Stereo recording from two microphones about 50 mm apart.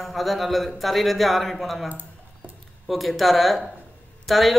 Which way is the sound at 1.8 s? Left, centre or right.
Right.